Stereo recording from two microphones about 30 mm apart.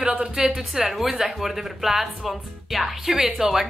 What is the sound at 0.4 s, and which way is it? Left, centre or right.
A woman's voice, centre.